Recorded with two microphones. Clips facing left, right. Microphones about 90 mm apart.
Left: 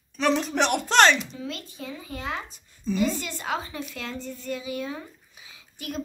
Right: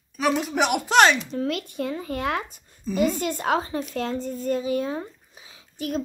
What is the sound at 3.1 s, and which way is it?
Speech, 45° right (ahead or behind).